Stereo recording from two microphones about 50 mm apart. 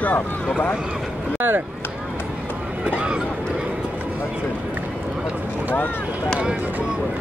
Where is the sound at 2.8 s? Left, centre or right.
Right.